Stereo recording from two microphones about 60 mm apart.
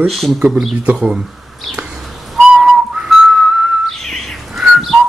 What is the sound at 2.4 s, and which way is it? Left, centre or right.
Whistling, centre.